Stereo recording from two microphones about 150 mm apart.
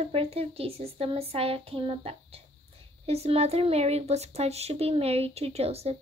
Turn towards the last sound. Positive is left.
turn(degrees=-45)  # may be behind; listen again after turning